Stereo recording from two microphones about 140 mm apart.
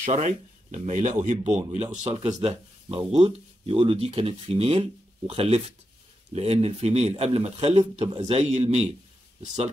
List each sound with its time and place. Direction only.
0.0 s speech: 60° right (ahead or behind)
2.0 s speech: 35° right (ahead or behind); by 8.9 s 50° right (ahead or behind)